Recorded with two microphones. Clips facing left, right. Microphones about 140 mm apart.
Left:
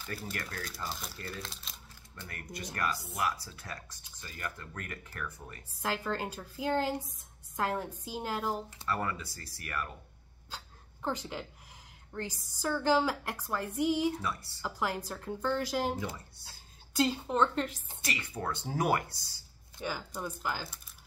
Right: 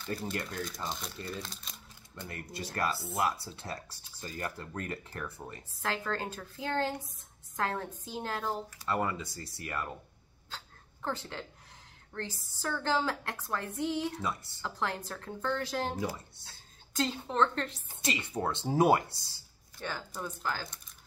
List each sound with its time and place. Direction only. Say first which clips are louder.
0.2 s speech: right 4 dB; 25° right (ahead or behind)
0.8 s speech: right 2 dB; centre (ahead or behind)
2.5 s speech: right 1 dB; 30° right (ahead or behind)
5.8 s a woman's voice: left 1 dB; 10° left (ahead or behind)
8.8 s speech: right 3 dB; 20° right (ahead or behind)
10.5 s hiccup: even; 10° left (ahead or behind)
12.1 s a woman's voice: left 1 dB; 10° left (ahead or behind)
14.2 s speech: right 1 dB; 20° right (ahead or behind)
14.6 s a woman's voice: left 2 dB; 10° left (ahead or behind)
18.0 s speech: right 4 dB; 20° right (ahead or behind)
19.8 s a woman's voice: left 1 dB; 10° left (ahead or behind)